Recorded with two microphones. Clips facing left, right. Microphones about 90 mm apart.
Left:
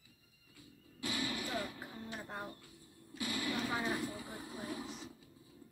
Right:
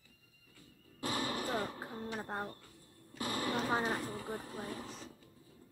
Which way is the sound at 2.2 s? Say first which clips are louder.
Right 5 dB; 40° right (ahead or behind).